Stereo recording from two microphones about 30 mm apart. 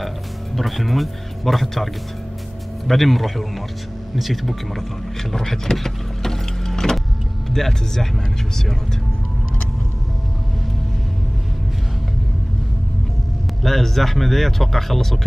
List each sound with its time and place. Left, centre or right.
0.6 s speech: centre
2.9 s speech: centre
5.3 s speech: centre
5.8 s power windows: centre
7.4 s speech: centre
13.6 s speech: centre